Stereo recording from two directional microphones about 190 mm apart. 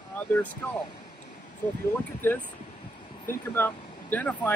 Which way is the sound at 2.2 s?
10° left (ahead or behind).